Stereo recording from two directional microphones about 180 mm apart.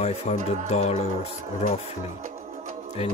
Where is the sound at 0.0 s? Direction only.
35° left (ahead or behind).